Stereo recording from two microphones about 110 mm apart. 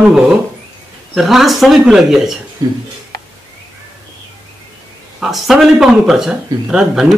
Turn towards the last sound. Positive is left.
turn(degrees=-5)  # may be behind; listen again after turning